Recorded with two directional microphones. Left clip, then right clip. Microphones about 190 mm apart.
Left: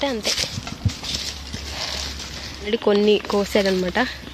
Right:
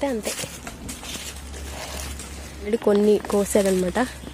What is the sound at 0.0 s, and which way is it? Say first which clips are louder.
Speech: left 4 dB; 10° right (ahead or behind).